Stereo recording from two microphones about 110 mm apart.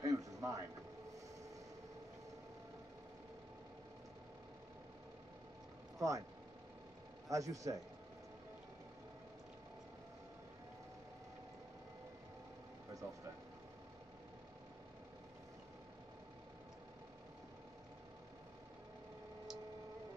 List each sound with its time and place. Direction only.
0.0 s a sound: 30° right (ahead or behind)
5.9 s speech: 30° right (ahead or behind)
7.2 s speech: 30° right (ahead or behind)